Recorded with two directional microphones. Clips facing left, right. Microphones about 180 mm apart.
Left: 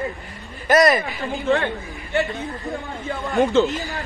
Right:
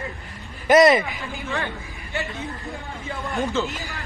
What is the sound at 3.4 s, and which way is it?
Speech, 65° left (ahead or behind).